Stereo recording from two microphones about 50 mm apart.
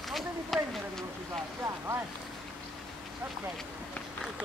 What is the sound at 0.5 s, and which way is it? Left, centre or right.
Speech, centre.